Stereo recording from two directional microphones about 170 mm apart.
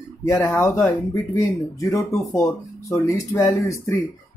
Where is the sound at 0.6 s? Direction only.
20° left (ahead or behind).